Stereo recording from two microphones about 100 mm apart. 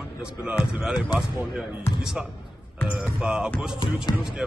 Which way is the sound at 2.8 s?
10° right (ahead or behind).